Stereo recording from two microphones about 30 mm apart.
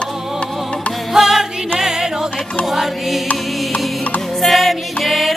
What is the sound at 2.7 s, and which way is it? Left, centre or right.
Mantra, centre.